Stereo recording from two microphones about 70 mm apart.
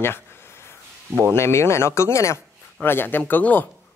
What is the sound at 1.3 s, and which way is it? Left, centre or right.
Speech, left.